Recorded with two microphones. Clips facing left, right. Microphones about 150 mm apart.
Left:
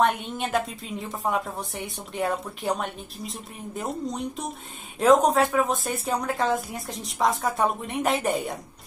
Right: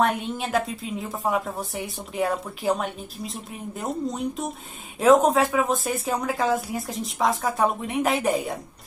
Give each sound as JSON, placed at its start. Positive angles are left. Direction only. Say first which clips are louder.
{"t": 0.0, "sound": "a woman's voice", "louder": "even", "side_deg": 0}